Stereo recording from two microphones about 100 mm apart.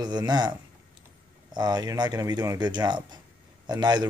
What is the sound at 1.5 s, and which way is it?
Speech, 45° right (ahead or behind).